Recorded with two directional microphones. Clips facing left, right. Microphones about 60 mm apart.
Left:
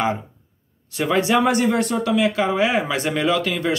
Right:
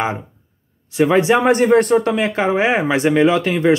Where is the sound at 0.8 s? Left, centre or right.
Centre.